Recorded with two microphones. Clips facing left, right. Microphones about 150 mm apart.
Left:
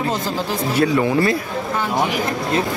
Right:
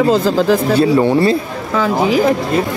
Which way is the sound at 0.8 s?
30° right (ahead or behind).